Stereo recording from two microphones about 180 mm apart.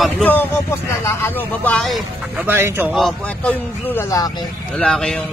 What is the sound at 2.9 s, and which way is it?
Speech, centre (ahead or behind).